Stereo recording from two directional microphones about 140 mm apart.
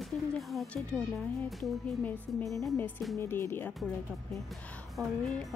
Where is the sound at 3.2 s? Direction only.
15° left (ahead or behind).